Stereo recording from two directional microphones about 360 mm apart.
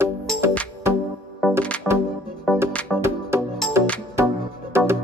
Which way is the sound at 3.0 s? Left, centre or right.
Centre.